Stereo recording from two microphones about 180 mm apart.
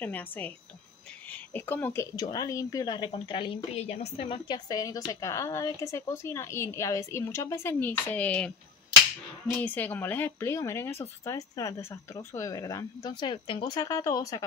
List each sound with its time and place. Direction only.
0.0 s a woman's voice: 10° left (ahead or behind)
9.6 s a woman's voice: 10° left (ahead or behind)